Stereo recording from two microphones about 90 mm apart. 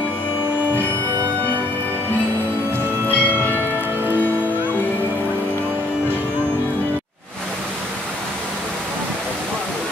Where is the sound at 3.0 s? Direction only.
20° left (ahead or behind).